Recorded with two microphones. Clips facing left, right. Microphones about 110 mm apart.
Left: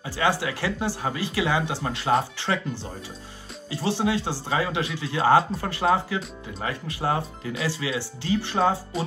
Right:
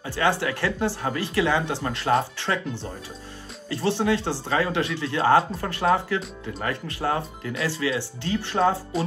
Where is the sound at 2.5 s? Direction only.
30° left (ahead or behind).